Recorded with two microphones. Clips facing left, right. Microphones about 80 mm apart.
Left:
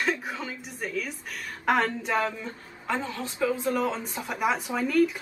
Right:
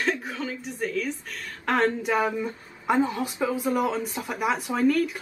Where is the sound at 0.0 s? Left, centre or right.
Centre.